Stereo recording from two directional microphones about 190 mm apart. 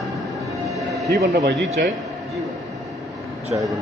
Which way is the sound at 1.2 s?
65° right (ahead or behind).